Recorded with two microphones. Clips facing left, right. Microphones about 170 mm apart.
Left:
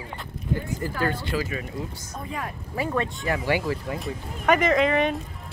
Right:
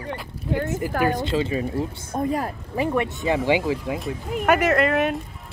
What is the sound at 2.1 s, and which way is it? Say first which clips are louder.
Speech: right 16 dB; 50° right (ahead or behind).